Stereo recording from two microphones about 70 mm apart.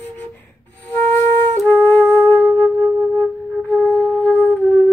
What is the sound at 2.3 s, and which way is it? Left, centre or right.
Music, right.